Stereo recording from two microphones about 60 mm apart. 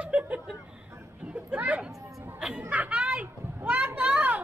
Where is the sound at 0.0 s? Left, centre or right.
Right.